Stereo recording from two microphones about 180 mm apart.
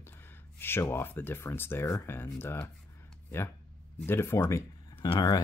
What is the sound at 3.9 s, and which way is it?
Speech, 10° left (ahead or behind).